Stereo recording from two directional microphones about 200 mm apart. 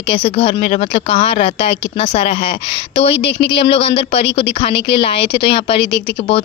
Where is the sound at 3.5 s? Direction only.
30° left (ahead or behind).